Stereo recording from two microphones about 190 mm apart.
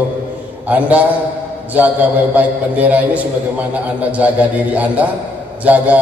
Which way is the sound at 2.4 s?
10° right (ahead or behind).